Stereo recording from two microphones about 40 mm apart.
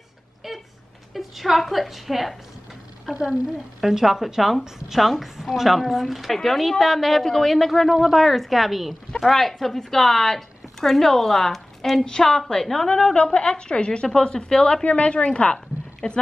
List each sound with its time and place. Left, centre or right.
0.4 s a sound: centre
1.1 s a woman's voice: centre
12.0 s a woman's voice: centre